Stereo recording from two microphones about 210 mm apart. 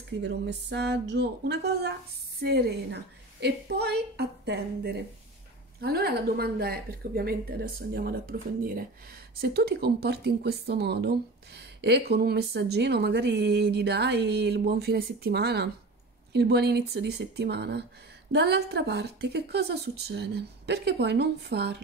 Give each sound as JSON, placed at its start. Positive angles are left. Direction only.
{"t": 0.2, "sound": "speech", "side_deg": -55}